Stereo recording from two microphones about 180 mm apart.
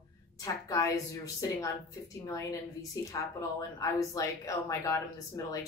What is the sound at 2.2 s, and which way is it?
Speech, 20° left (ahead or behind).